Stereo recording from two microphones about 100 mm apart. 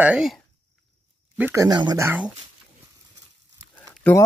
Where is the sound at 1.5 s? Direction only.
30° right (ahead or behind).